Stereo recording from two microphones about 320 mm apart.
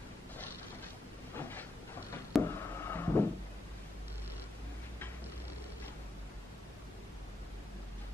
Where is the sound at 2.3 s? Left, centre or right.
Centre.